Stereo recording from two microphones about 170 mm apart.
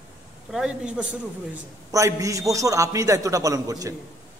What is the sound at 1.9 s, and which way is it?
A man's voice, 20° right (ahead or behind).